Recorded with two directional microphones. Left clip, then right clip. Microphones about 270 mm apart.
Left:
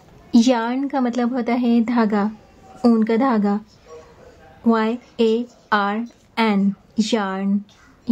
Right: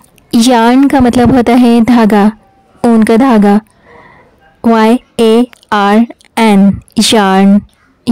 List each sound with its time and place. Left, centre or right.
0.3 s a woman's voice: right
4.6 s speech: right